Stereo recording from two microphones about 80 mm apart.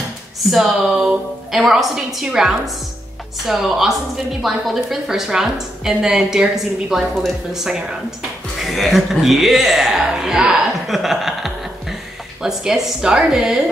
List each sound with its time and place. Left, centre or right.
0.5 s a woman's voice: centre